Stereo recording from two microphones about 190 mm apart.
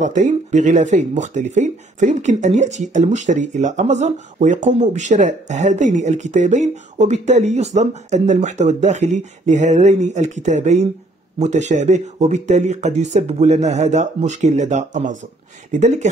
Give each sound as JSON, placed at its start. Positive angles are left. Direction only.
{"t": 0.0, "sound": "speech", "side_deg": -40}